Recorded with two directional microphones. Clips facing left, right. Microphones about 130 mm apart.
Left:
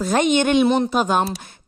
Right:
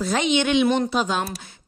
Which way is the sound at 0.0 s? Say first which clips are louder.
Left 4 dB; 45° left (ahead or behind).